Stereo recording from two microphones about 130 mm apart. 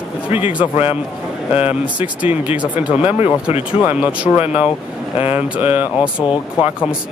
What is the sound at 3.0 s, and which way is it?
Speech, 55° left (ahead or behind).